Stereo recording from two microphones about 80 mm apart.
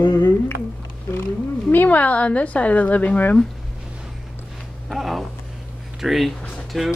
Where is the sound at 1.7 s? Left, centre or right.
Left.